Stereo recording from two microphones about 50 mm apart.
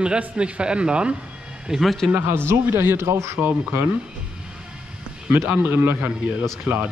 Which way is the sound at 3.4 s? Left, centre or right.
Right.